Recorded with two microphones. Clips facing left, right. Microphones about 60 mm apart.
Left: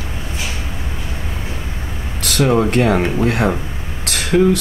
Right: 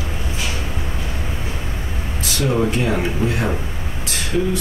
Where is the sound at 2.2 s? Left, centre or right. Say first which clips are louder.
Left 6 dB; left.